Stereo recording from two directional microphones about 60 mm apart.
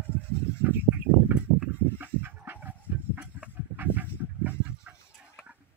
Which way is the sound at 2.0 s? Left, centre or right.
Right.